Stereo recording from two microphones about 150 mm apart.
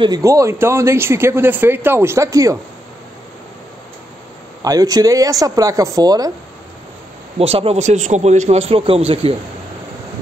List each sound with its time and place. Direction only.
0.0 s speech: 25° right (ahead or behind)
4.6 s speech: 25° right (ahead or behind)
7.3 s a man's voice: 40° right (ahead or behind)